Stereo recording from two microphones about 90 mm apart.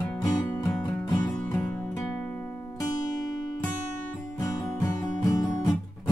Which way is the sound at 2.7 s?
45° left (ahead or behind).